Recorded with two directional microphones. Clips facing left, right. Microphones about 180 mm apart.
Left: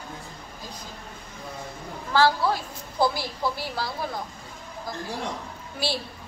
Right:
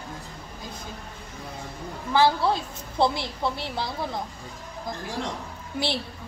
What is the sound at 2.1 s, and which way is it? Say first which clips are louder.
A woman's voice: even; 20° right (ahead or behind).